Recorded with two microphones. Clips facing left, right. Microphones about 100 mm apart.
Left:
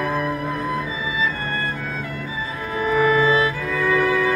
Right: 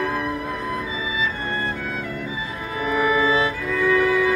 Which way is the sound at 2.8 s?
5° right (ahead or behind).